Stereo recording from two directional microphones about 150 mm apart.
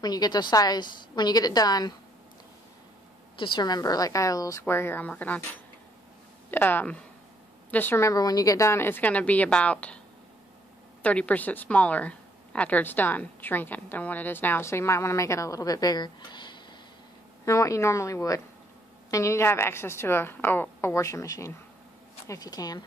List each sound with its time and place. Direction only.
0.0 s a woman's voice: 25° left (ahead or behind)
3.3 s a woman's voice: 30° left (ahead or behind); by 5.4 s 10° left (ahead or behind)
6.5 s speech: 15° left (ahead or behind)
11.0 s speech: 10° left (ahead or behind); by 16.6 s 30° left (ahead or behind)
17.5 s a woman's voice: 20° left (ahead or behind)